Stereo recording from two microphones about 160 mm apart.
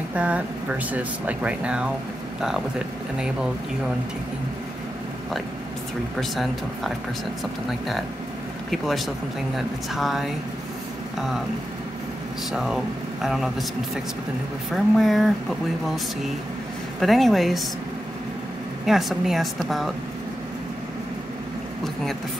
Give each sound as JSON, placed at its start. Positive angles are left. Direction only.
{"t": 0.1, "sound": "speech", "side_deg": -10}
{"t": 6.3, "sound": "speech", "side_deg": 0}
{"t": 8.6, "sound": "speech", "side_deg": 0}
{"t": 12.5, "sound": "speech", "side_deg": 0}
{"t": 14.7, "sound": "speech", "side_deg": 0}
{"t": 17.0, "sound": "speech", "side_deg": 0}
{"t": 18.9, "sound": "speech", "side_deg": 0}